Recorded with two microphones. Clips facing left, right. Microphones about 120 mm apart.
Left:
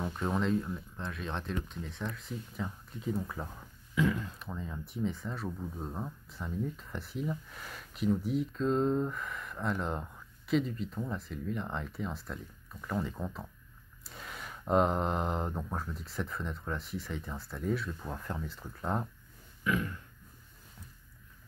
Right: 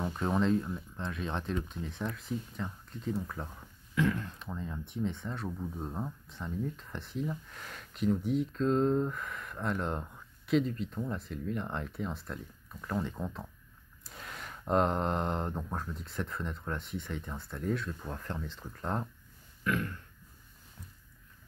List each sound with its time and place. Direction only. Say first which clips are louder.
0.0 s speech: right 2 dB; 5° right (ahead or behind)